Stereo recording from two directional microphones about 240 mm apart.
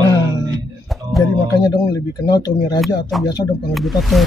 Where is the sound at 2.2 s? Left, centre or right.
Centre.